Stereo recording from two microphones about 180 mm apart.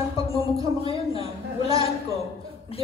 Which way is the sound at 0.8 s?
30° left (ahead or behind).